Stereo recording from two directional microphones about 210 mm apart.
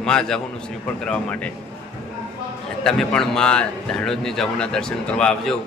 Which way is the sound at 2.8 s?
5° left (ahead or behind).